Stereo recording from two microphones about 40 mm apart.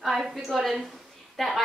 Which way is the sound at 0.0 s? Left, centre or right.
Centre.